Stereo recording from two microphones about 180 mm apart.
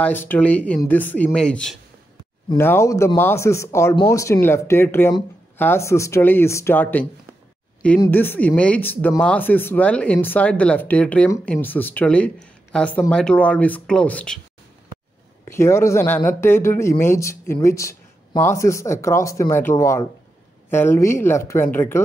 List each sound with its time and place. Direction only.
0.0 s speech: 10° left (ahead or behind)
15.4 s speech: 15° left (ahead or behind)